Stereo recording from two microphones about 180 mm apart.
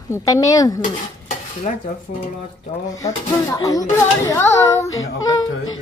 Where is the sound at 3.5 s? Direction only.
20° left (ahead or behind).